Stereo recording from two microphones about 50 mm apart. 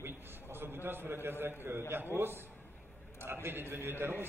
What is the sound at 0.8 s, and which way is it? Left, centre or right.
A man's voice, right.